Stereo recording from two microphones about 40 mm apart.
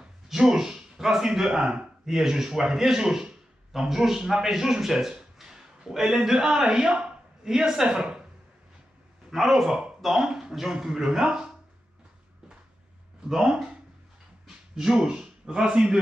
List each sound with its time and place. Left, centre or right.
0.3 s a man's voice: centre
6.9 s a sound: right
7.4 s speech: centre
9.3 s speech: centre
10.0 s a sound: centre
10.7 s speech: centre
13.3 s speech: centre
15.0 s a man's voice: right